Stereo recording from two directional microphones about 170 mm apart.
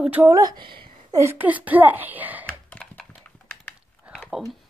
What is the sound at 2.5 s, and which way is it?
Computer keyboard, 5° left (ahead or behind).